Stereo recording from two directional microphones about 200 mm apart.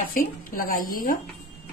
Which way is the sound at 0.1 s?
45° left (ahead or behind).